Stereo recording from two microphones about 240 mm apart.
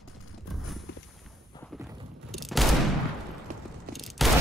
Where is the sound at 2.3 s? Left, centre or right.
Centre.